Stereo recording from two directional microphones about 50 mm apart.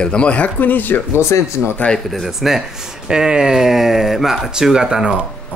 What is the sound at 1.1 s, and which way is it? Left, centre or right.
Speech, left.